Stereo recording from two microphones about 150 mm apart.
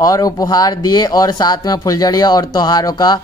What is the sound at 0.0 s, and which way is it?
Speech, 25° left (ahead or behind).